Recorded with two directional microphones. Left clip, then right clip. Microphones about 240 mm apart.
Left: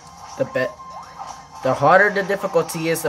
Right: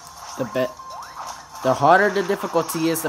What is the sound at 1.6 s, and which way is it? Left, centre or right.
Speech, right.